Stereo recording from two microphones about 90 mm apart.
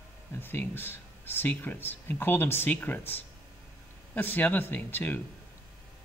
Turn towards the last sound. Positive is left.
turn(degrees=20)  # may be behind; listen again after turning